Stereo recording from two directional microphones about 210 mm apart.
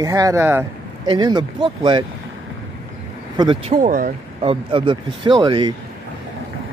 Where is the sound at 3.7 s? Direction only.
40° right (ahead or behind).